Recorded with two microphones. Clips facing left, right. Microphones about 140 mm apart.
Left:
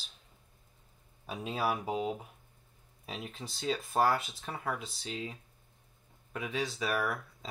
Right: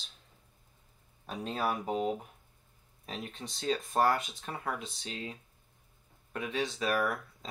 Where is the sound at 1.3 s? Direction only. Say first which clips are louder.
Even; 5° left (ahead or behind).